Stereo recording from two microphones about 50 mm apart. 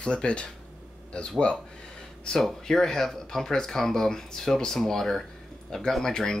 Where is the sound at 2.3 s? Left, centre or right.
Centre.